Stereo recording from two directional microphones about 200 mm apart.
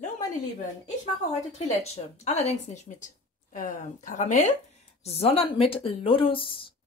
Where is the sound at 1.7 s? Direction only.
30° left (ahead or behind).